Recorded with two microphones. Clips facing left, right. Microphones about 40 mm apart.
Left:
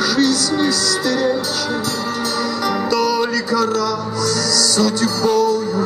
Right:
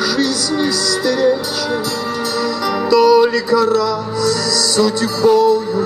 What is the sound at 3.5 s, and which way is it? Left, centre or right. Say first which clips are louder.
Music: right 4 dB; right.